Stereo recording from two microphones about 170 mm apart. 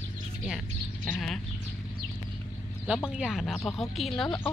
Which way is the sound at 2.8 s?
5° right (ahead or behind).